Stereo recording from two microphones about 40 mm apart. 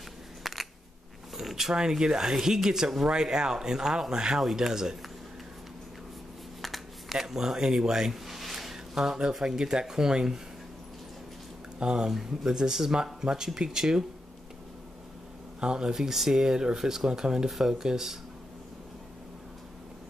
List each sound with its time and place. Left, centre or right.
0.4 s a sound: centre
1.3 s speech: centre
6.6 s a sound: centre
8.7 s speech: centre
11.8 s speech: centre
15.6 s speech: centre
16.0 s speech: centre